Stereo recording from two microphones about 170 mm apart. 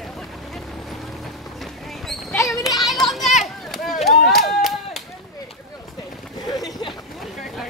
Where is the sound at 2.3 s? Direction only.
20° left (ahead or behind).